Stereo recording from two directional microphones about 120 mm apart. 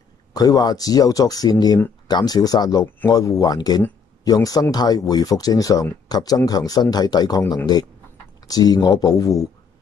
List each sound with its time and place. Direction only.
0.3 s speech: 30° left (ahead or behind)